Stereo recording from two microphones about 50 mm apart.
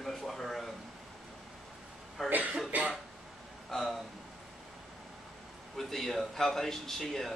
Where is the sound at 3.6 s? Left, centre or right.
Centre.